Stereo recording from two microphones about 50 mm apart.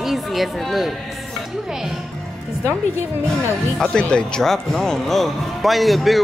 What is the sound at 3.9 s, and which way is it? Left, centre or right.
Speech, centre.